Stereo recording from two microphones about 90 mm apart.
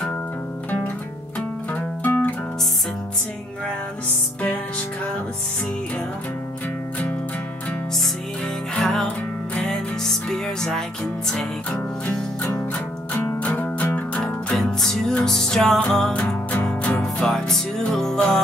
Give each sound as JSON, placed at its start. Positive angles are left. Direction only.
{"t": 1.7, "sound": "music", "side_deg": 15}
{"t": 4.4, "sound": "music", "side_deg": 15}
{"t": 8.7, "sound": "music", "side_deg": 5}
{"t": 12.7, "sound": "music", "side_deg": 15}
{"t": 14.1, "sound": "music", "side_deg": 5}